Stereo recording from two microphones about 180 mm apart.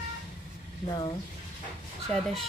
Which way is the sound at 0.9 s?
25° left (ahead or behind).